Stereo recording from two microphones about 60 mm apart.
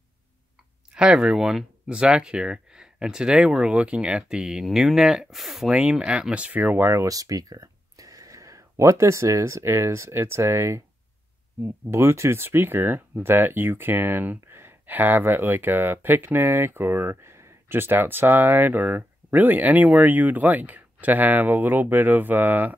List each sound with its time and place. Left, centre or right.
0.9 s speech: centre
1.9 s speech: centre
5.7 s speech: centre
6.8 s speech: right
7.1 s speech: right
11.9 s speech: right